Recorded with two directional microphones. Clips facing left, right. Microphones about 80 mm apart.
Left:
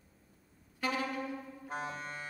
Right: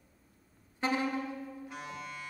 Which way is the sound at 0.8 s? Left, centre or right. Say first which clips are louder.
Right 3 dB; right.